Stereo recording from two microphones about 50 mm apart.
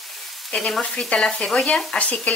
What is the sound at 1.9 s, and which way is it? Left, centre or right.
Speech, left.